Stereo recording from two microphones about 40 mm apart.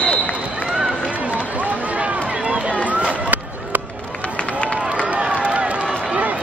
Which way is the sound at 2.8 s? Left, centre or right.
Right.